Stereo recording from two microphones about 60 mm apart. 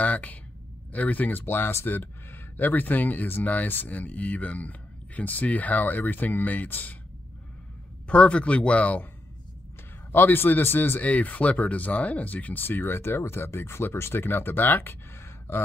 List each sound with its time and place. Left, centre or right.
0.0 s speech: left
8.1 s speech: centre
10.1 s speech: left